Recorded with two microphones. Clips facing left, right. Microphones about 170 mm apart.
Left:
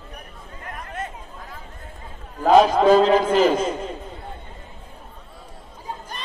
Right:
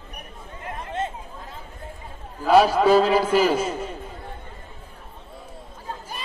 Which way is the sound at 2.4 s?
10° right (ahead or behind).